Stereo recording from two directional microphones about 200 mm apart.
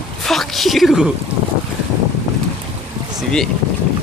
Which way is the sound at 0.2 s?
Centre (ahead or behind).